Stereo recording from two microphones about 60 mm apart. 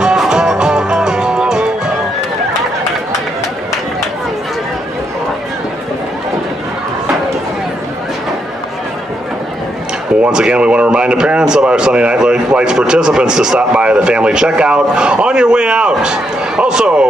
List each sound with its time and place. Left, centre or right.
0.3 s music: centre
10.2 s speech: centre